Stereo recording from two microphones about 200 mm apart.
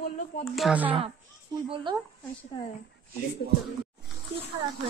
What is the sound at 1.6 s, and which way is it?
Speech, 25° right (ahead or behind).